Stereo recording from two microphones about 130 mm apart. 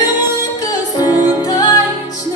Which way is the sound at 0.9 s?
30° left (ahead or behind).